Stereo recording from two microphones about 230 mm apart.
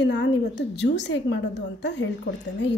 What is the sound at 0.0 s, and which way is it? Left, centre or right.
A woman's voice, left.